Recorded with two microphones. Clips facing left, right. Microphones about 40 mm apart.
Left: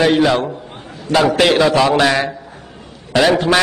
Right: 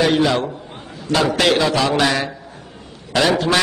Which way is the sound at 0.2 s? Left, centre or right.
Left.